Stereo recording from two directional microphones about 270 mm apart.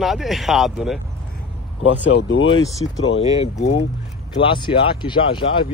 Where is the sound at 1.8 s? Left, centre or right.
Left.